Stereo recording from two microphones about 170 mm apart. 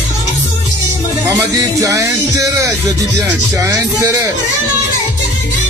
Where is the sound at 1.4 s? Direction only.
20° right (ahead or behind).